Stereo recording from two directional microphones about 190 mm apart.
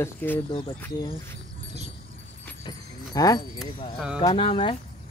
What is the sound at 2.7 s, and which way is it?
Keys jangling, 20° left (ahead or behind).